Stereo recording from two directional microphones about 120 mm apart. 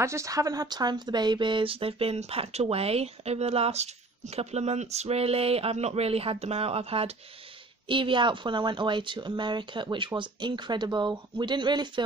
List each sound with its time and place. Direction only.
0.0 s speech: 25° right (ahead or behind); by 7.2 s 55° right (ahead or behind)
7.9 s speech: 45° right (ahead or behind)